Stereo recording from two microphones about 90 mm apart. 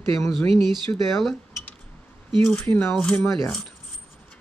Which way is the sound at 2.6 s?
25° left (ahead or behind).